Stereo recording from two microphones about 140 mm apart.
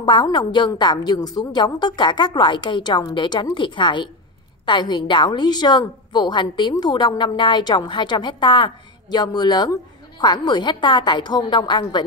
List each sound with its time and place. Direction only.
0.0 s a woman's voice: 30° left (ahead or behind)